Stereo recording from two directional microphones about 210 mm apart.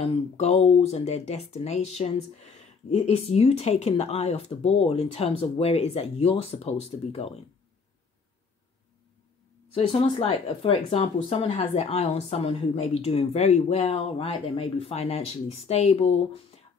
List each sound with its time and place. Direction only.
0.0 s speech: 30° left (ahead or behind)
9.7 s speech: 25° left (ahead or behind)